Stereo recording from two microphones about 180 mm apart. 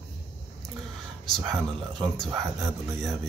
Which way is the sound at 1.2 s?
5° left (ahead or behind).